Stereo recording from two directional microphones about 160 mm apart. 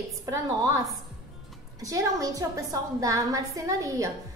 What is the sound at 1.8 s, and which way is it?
A woman's voice, 20° right (ahead or behind).